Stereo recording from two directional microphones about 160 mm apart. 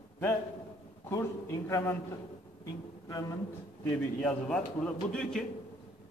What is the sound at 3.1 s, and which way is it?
Speech, 25° left (ahead or behind).